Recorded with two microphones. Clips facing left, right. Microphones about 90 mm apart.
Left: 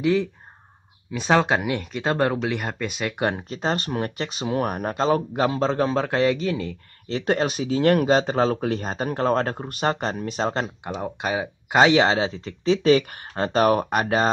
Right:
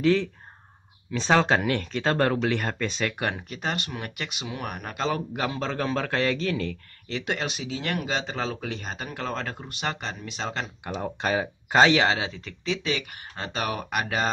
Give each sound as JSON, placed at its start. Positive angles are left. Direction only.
{"t": 0.0, "sound": "speech", "side_deg": 10}
{"t": 7.1, "sound": "speech", "side_deg": 35}
{"t": 10.8, "sound": "speech", "side_deg": 20}
{"t": 11.9, "sound": "speech", "side_deg": 25}